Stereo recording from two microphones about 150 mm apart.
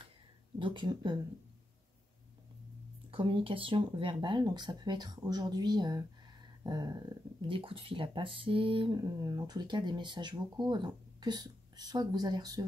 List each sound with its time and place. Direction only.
0.6 s speech: 35° right (ahead or behind)
3.1 s speech: 35° right (ahead or behind)